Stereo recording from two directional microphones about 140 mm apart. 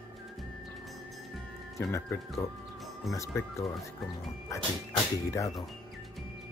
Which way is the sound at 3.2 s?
20° left (ahead or behind).